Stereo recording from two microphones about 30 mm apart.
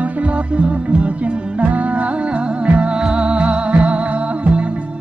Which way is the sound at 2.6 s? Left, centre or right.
Right.